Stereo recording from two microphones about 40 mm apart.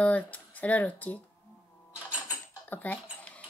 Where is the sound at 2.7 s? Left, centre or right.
Left.